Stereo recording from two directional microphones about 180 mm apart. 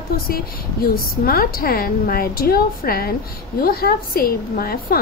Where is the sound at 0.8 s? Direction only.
55° left (ahead or behind).